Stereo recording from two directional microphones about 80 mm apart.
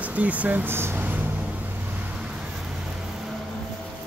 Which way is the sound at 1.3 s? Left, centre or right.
Centre.